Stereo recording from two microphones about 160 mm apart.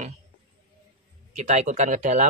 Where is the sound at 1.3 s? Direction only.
45° right (ahead or behind).